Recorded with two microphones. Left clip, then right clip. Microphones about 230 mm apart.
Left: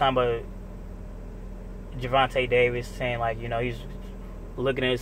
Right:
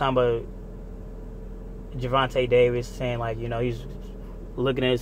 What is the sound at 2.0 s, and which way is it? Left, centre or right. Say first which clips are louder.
Speech: even; centre.